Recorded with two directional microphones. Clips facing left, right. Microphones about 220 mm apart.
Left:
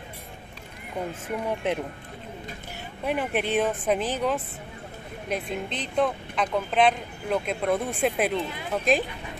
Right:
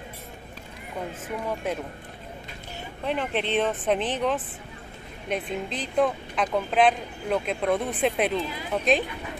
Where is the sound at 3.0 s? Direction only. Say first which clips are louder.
Left 1 dB; 10° left (ahead or behind).